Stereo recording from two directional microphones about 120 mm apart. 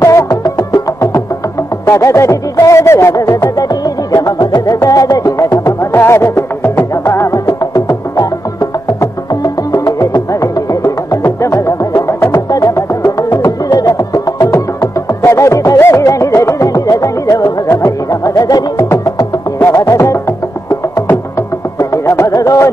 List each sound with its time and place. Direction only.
0.0 s music: 25° left (ahead or behind)
21.7 s music: 30° left (ahead or behind)